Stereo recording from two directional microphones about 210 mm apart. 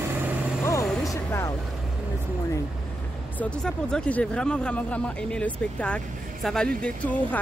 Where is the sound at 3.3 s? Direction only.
5° left (ahead or behind).